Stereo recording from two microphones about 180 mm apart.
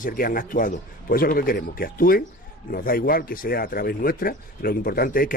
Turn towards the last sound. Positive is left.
turn(degrees=55)  # may be behind; listen again after turning